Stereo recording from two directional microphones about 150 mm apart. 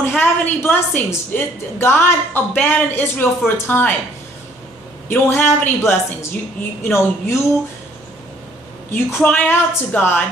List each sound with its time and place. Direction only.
0.0 s a woman's voice: 10° left (ahead or behind)
5.1 s a woman's voice: 15° left (ahead or behind)
8.9 s a woman's voice: 10° left (ahead or behind)